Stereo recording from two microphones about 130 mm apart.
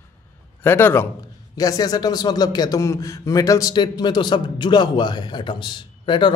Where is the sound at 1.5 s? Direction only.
30° left (ahead or behind).